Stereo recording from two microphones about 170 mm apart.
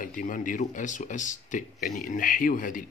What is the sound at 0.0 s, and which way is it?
Speech, 55° left (ahead or behind).